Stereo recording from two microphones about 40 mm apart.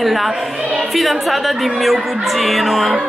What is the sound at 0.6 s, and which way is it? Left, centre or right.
Speech, right.